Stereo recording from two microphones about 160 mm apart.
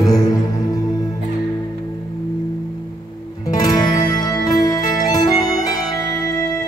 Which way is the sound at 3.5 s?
25° left (ahead or behind).